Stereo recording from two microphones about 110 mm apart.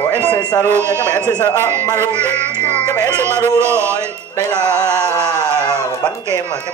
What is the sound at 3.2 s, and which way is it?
Speech, 25° right (ahead or behind).